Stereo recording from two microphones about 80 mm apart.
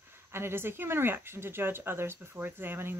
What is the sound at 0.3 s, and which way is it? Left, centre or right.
Speech, right.